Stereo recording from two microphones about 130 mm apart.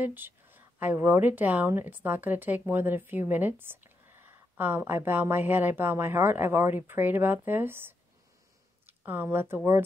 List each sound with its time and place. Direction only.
0.0 s a woman's voice: 15° right (ahead or behind)